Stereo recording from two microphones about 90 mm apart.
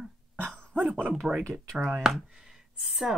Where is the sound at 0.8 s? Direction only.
20° right (ahead or behind).